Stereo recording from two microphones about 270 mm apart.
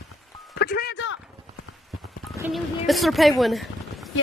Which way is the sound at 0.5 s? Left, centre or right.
Left.